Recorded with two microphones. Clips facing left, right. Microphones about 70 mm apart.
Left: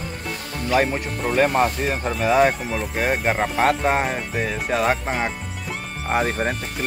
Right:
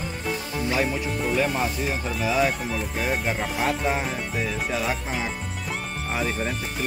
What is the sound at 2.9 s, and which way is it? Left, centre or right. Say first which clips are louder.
Speech: left 6 dB; left.